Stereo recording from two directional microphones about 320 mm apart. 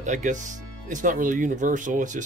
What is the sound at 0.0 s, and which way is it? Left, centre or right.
Speech, right.